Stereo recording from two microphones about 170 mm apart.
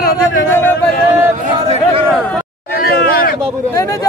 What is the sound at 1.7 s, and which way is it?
Speech, 35° right (ahead or behind).